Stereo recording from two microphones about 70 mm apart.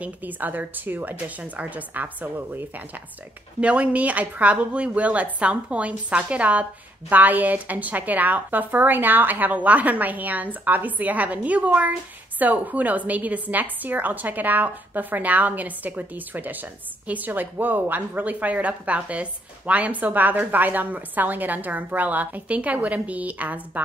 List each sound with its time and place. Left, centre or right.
0.0 s a woman's voice: right
3.6 s a woman's voice: centre